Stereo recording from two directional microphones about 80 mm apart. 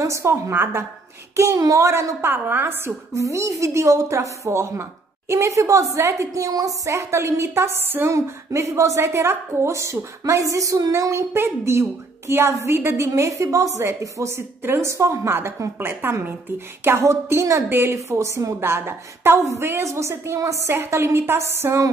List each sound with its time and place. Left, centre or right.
0.0 s a woman's voice: right
3.1 s a woman's voice: right
8.1 s a woman's voice: right